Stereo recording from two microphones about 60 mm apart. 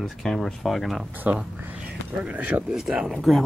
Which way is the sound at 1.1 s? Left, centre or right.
Right.